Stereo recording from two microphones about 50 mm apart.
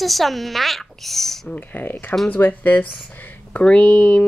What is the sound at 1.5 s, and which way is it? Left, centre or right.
Speech, left.